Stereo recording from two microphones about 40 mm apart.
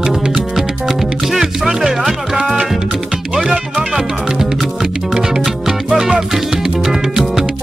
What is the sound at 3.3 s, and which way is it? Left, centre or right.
Music, centre.